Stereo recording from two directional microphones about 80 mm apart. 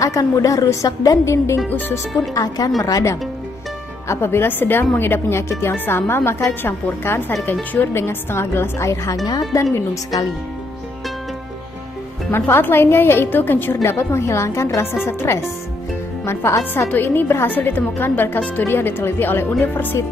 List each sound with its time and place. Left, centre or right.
0.0 s a woman's voice: left
1.7 s a woman's voice: left
2.3 s a woman's voice: left
4.1 s a woman's voice: left
12.3 s a woman's voice: left